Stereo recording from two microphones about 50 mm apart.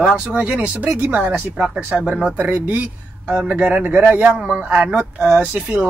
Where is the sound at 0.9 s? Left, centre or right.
Right.